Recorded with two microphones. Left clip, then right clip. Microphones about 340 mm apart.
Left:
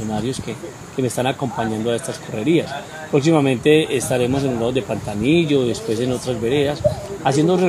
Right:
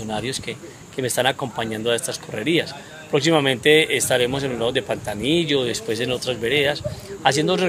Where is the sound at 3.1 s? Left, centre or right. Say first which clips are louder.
Left 1 dB; right.